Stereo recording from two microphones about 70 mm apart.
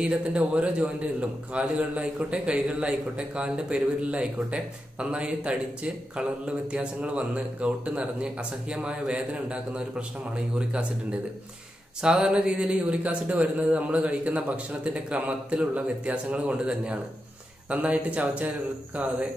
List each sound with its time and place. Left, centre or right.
0.0 s a man's voice: centre
12.0 s a man's voice: centre